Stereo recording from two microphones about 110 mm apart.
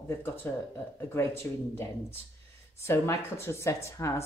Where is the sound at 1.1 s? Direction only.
20° left (ahead or behind).